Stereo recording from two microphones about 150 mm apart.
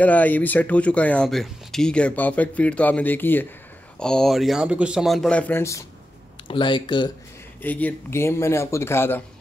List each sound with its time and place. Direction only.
0.0 s speech: 10° left (ahead or behind)
6.4 s speech: 35° left (ahead or behind)
7.6 s speech: 10° left (ahead or behind)